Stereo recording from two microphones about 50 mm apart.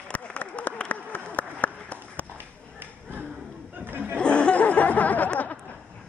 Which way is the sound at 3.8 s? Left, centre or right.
Right.